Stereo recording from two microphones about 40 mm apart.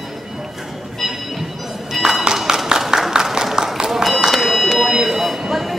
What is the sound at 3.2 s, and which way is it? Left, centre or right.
Run, centre.